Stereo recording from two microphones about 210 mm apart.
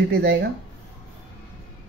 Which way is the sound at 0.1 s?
50° right (ahead or behind).